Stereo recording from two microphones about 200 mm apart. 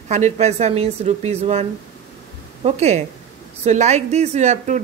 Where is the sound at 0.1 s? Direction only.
35° right (ahead or behind).